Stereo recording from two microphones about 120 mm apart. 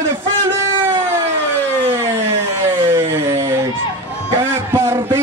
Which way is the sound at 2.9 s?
20° right (ahead or behind).